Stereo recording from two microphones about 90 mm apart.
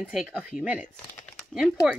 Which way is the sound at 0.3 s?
15° right (ahead or behind).